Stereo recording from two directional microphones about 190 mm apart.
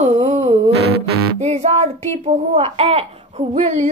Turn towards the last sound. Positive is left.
turn(degrees=-35)  # may be behind; listen again after turning